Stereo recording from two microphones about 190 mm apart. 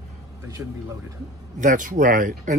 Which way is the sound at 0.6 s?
15° right (ahead or behind).